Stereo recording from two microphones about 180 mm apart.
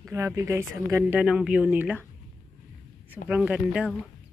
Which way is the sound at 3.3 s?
5° right (ahead or behind).